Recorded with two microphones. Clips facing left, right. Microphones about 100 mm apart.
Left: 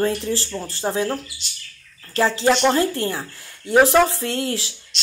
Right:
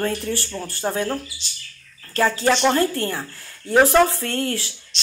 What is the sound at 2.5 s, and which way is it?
Speech, 10° left (ahead or behind).